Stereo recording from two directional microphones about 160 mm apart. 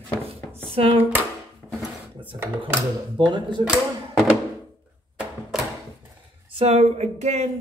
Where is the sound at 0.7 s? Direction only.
35° right (ahead or behind).